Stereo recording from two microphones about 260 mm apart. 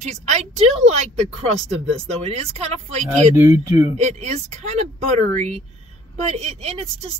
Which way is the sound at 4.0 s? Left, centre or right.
Right.